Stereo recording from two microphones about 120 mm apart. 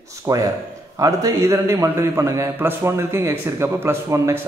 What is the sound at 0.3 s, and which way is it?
A man's voice, 30° right (ahead or behind).